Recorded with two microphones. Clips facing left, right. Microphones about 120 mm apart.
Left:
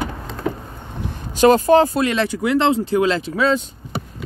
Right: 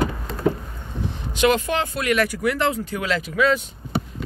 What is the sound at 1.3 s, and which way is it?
Speech, 35° left (ahead or behind).